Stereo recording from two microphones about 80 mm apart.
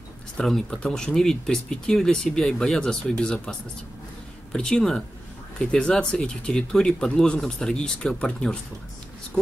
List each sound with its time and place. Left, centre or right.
0.4 s speech: centre